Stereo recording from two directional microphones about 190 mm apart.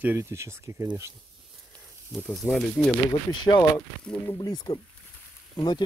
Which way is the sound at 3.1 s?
20° left (ahead or behind).